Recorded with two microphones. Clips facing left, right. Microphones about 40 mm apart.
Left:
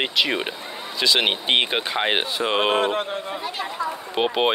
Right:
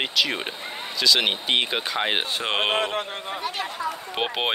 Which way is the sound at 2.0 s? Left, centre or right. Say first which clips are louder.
Left 3 dB; centre.